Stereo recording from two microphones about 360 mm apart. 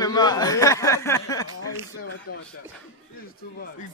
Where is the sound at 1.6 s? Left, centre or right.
Left.